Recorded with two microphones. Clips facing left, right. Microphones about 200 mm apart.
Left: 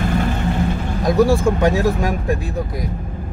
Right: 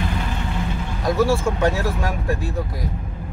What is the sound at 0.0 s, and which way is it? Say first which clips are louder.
Vehicle: left 6 dB; 50° left (ahead or behind).